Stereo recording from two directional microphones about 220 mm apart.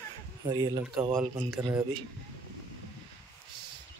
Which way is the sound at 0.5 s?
20° right (ahead or behind).